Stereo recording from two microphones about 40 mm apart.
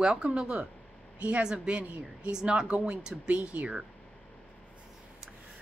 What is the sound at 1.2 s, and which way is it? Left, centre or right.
Speech, right.